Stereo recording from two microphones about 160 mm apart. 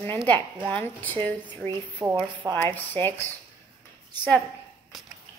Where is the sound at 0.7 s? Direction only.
10° left (ahead or behind).